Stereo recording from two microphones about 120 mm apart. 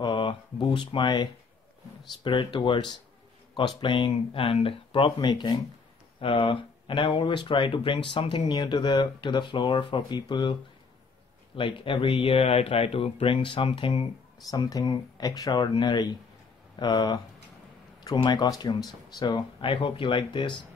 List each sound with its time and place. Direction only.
0.0 s speech: 45° left (ahead or behind)
14.5 s speech: 30° left (ahead or behind)